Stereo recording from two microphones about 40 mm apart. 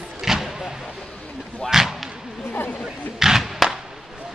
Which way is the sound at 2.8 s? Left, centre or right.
Centre.